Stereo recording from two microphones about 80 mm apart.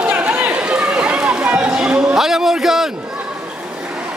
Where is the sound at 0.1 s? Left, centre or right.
Centre.